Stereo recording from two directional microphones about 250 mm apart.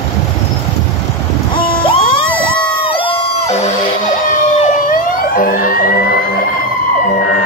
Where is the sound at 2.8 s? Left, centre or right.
Left.